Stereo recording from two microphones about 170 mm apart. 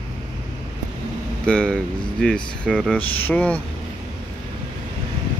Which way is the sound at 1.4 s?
5° left (ahead or behind).